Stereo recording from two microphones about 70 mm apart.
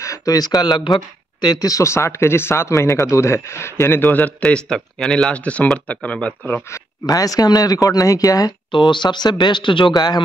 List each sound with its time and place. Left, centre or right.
0.0 s speech: left
1.4 s speech: left; by 6.3 s centre
7.1 s speech: left